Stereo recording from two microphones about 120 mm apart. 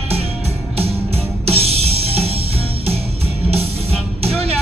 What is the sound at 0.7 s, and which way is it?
Music, 55° right (ahead or behind).